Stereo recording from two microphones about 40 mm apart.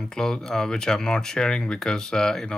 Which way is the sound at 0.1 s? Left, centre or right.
Centre.